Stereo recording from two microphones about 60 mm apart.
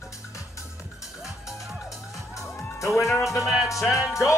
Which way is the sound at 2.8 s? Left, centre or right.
Left.